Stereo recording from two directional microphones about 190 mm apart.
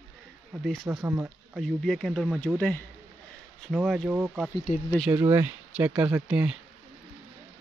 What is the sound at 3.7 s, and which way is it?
Speech, 5° right (ahead or behind).